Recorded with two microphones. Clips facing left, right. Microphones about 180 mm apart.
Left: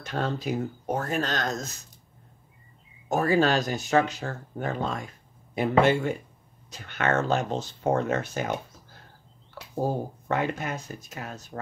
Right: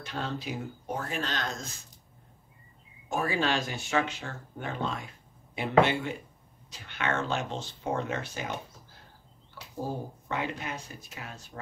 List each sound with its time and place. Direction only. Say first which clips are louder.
0.0 s speech: left 6 dB; 45° left (ahead or behind)
3.1 s speech: left 6 dB; 40° left (ahead or behind)
10.2 s speech: left 6 dB; 50° left (ahead or behind)